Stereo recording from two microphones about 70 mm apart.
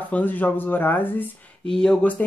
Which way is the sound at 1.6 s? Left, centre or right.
Centre.